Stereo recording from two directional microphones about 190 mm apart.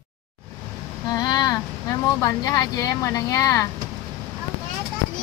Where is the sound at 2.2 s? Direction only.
20° left (ahead or behind).